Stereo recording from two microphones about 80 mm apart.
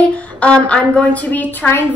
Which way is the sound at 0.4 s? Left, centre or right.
Centre.